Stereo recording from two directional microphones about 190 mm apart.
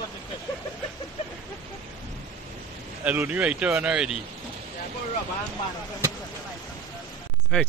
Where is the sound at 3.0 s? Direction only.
10° right (ahead or behind).